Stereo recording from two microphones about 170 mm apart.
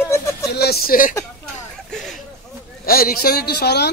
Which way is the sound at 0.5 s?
70° left (ahead or behind).